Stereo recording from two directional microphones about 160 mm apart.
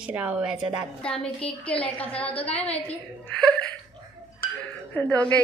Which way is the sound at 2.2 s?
40° left (ahead or behind).